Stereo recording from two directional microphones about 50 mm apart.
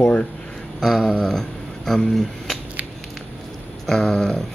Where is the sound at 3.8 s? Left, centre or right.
Centre.